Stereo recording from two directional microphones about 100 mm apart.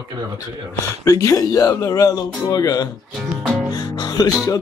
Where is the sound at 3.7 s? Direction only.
45° left (ahead or behind).